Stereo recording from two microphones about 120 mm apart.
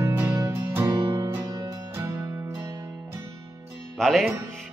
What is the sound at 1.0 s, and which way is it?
Music, 35° right (ahead or behind).